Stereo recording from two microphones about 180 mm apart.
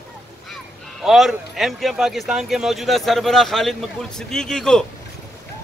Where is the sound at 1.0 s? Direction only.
Centre (ahead or behind).